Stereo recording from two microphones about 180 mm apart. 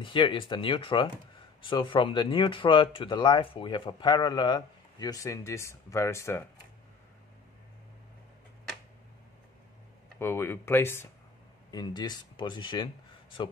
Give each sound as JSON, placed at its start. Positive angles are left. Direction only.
{"t": 0.0, "sound": "speech", "side_deg": 30}
{"t": 10.1, "sound": "speech", "side_deg": 15}
{"t": 11.7, "sound": "speech", "side_deg": 25}